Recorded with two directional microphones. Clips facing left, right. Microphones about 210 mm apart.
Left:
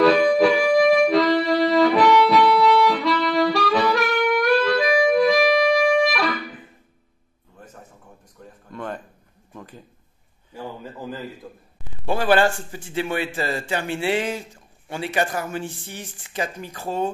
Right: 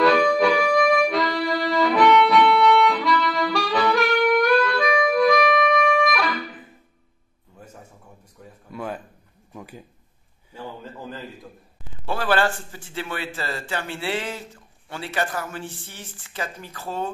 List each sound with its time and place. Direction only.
0.0 s music: centre (ahead or behind)
3.5 s saxophone: centre (ahead or behind)
5.1 s music: centre (ahead or behind)
8.6 s a sound: 5° right (ahead or behind)
12.1 s a man's voice: 15° left (ahead or behind)